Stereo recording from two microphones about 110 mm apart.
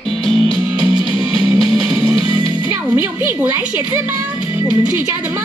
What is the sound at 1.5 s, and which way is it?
Music, 5° right (ahead or behind).